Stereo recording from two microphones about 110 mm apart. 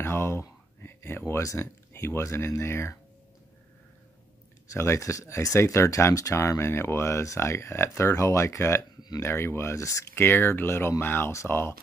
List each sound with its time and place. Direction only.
0.0 s speech: 25° left (ahead or behind)
4.7 s speech: 25° left (ahead or behind)